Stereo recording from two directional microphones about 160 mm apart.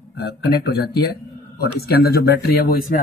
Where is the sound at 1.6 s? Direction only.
80° left.